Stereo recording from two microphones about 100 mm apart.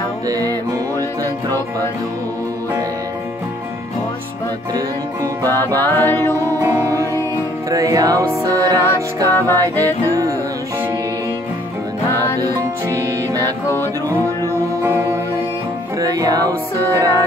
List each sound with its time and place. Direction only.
5.5 s music: 35° right (ahead or behind)
5.8 s music: 20° left (ahead or behind)
6.4 s music: 25° right (ahead or behind)
12.9 s music: 40° right (ahead or behind)
14.8 s music: 20° right (ahead or behind)
16.0 s music: 35° right (ahead or behind)